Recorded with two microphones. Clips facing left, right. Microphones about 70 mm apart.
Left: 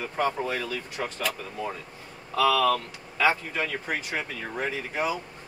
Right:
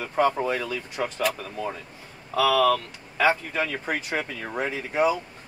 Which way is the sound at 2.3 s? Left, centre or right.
Right.